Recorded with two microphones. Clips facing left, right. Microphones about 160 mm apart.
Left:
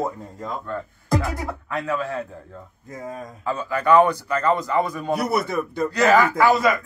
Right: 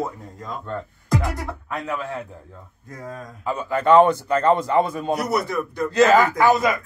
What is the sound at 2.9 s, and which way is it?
Speech, 20° left (ahead or behind).